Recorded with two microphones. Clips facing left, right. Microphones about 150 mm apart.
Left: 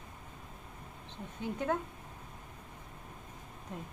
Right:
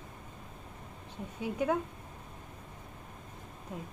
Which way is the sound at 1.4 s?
10° right (ahead or behind).